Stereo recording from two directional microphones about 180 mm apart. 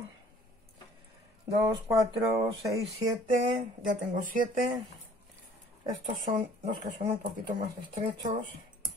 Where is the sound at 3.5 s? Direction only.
45° right (ahead or behind).